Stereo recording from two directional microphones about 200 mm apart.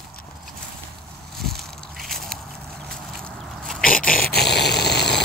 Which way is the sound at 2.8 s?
5° left (ahead or behind).